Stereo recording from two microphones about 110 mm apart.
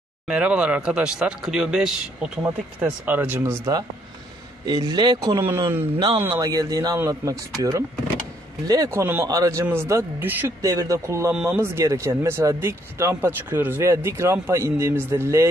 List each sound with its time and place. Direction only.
0.3 s speech: 10° right (ahead or behind)
2.4 s speech: 15° right (ahead or behind)
4.6 s speech: 40° right (ahead or behind)
5.4 s speech: 20° right (ahead or behind)
5.9 s speech: 45° right (ahead or behind)
9.0 s speech: 20° right (ahead or behind)